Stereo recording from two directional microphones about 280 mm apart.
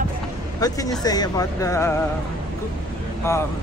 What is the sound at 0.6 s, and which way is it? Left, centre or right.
Speech, centre.